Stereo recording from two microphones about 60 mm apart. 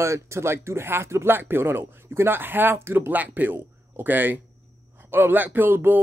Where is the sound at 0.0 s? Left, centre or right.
Right.